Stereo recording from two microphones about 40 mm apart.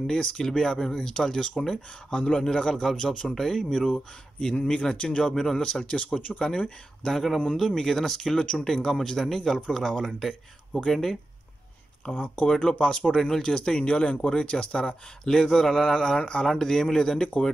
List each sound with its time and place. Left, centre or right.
0.2 s speech: centre
2.1 s speech: left
2.4 s speech: centre
5.2 s speech: centre
5.6 s speech: left
6.4 s speech: left
7.1 s speech: centre
12.1 s speech: left
12.4 s speech: left
12.8 s speech: centre
16.2 s speech: left
16.4 s speech: centre